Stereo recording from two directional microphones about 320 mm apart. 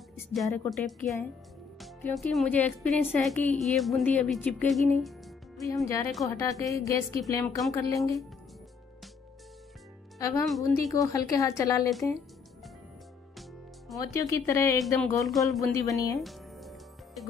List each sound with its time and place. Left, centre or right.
0.3 s speech: centre
6.6 s speech: centre
10.1 s speech: centre
13.9 s speech: centre
16.2 s music: centre